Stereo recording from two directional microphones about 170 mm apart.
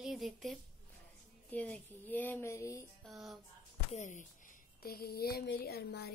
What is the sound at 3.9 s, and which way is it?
Speech, 45° left (ahead or behind).